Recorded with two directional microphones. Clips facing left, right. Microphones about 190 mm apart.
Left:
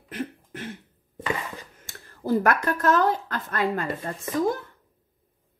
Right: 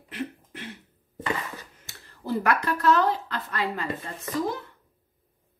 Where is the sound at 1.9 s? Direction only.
45° left (ahead or behind).